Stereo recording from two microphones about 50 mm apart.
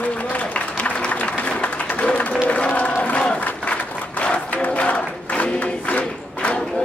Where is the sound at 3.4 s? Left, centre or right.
Left.